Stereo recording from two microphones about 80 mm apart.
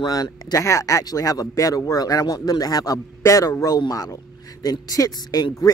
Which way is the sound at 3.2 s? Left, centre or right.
Left.